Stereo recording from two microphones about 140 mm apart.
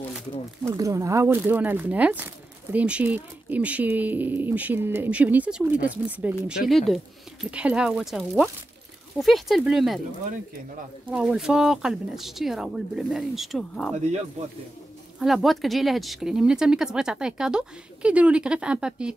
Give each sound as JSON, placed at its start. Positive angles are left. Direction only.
{"t": 0.7, "sound": "speech", "side_deg": -25}
{"t": 6.7, "sound": "speech", "side_deg": 0}
{"t": 11.1, "sound": "speech", "side_deg": -5}
{"t": 14.4, "sound": "a man's voice", "side_deg": -50}
{"t": 15.1, "sound": "speech", "side_deg": 0}